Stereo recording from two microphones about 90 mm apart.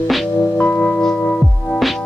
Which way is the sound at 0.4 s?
15° left (ahead or behind).